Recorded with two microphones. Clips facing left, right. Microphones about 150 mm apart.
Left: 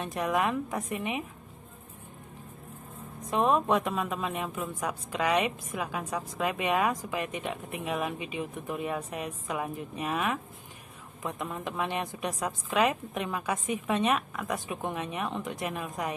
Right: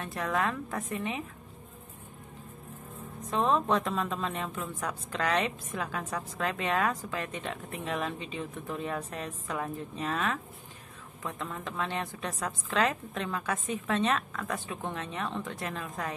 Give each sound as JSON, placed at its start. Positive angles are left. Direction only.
{"t": 0.0, "sound": "a woman's voice", "side_deg": 20}
{"t": 3.3, "sound": "a woman's voice", "side_deg": 15}